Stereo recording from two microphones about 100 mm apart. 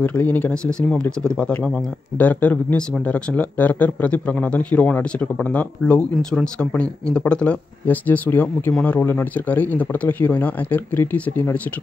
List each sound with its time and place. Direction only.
0.0 s speech: 15° left (ahead or behind)